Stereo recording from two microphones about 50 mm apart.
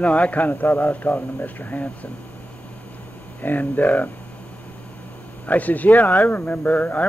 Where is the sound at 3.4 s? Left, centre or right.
Left.